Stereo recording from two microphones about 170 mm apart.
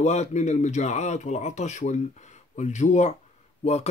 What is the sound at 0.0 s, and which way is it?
Speech, 40° left (ahead or behind).